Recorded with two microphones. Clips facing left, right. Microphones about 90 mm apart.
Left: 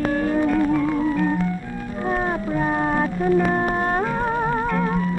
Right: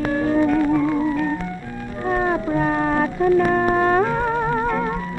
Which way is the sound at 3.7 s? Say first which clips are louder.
Right 5 dB; 25° right (ahead or behind).